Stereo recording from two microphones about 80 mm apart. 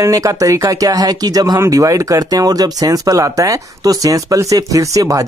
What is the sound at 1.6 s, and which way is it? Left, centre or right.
Speech, right.